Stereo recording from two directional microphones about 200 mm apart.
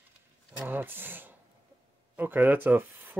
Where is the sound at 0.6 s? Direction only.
10° right (ahead or behind).